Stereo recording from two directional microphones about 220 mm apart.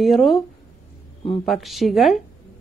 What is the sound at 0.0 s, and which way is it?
Speech, centre (ahead or behind).